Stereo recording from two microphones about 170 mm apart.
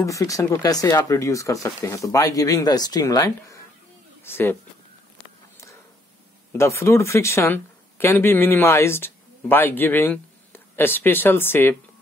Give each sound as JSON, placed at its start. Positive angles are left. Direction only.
{"t": 0.0, "sound": "speech", "side_deg": 20}
{"t": 6.5, "sound": "speech", "side_deg": 15}